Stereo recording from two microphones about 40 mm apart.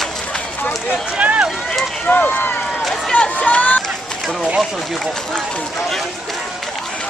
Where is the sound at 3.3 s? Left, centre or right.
Left.